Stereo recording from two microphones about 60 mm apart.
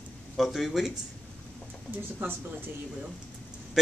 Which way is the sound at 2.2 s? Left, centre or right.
Right.